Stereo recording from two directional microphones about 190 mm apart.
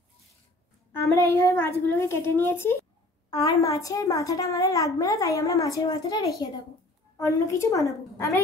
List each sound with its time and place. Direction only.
0.9 s a child's voice: 15° left (ahead or behind)